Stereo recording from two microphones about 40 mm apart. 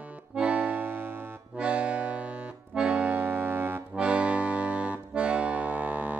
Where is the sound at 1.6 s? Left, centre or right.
Right.